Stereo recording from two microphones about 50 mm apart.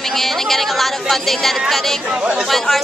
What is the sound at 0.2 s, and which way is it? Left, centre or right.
Speech, centre.